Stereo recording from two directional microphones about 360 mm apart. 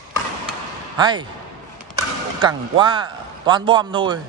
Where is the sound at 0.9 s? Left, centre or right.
Centre.